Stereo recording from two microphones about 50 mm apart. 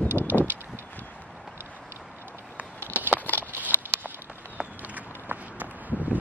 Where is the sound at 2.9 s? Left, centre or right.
Right.